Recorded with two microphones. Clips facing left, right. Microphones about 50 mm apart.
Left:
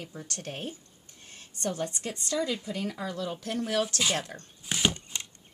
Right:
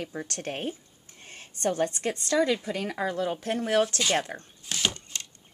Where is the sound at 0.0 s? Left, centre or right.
Right.